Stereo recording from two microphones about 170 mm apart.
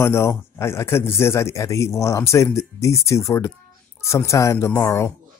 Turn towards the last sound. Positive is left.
turn(degrees=15)  # may be behind; listen again after turning